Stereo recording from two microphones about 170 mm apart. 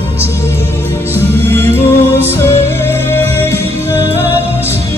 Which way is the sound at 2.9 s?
15° left (ahead or behind).